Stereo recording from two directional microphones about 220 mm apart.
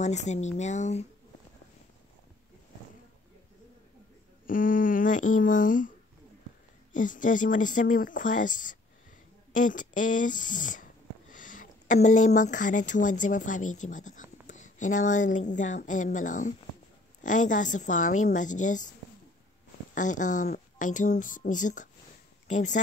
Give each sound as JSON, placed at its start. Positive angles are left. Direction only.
{"t": 0.0, "sound": "speech", "side_deg": 30}
{"t": 4.5, "sound": "speech", "side_deg": 40}
{"t": 19.9, "sound": "speech", "side_deg": 35}